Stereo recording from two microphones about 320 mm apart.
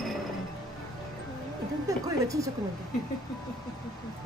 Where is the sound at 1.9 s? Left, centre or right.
Centre.